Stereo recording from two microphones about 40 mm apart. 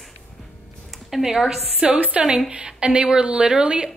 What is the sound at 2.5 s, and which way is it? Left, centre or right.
Speech, right.